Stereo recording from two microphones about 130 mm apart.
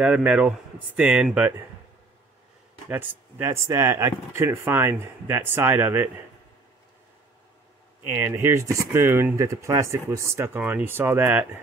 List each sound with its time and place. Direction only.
0.0 s speech: 10° right (ahead or behind)
3.4 s speech: 25° right (ahead or behind)
8.1 s speech: 20° right (ahead or behind)